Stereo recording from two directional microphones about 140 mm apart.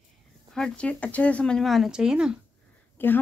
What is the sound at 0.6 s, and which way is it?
Speech, 10° left (ahead or behind).